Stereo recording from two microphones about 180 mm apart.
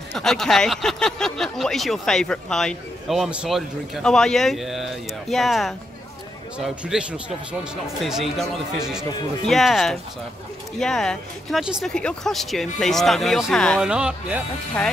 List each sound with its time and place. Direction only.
0.1 s speech: centre (ahead or behind)